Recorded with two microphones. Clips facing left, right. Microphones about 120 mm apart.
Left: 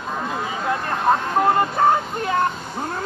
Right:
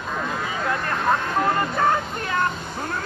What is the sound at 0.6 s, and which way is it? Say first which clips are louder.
Vehicle: left 3 dB; 30° left (ahead or behind).